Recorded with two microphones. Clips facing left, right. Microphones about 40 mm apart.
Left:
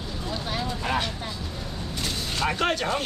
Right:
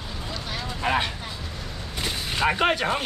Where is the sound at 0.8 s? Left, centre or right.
Right.